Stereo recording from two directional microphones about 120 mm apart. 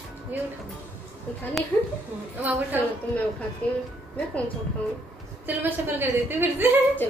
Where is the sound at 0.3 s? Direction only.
15° right (ahead or behind).